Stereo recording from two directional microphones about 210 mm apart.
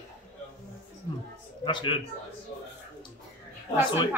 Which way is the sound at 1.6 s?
25° left (ahead or behind).